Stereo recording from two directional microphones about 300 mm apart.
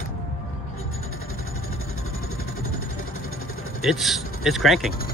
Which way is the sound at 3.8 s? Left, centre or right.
Centre.